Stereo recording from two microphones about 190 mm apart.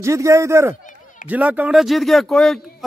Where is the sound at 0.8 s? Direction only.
45° left (ahead or behind).